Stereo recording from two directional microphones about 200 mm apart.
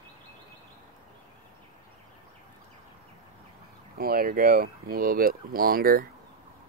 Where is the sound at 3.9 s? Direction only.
50° right (ahead or behind).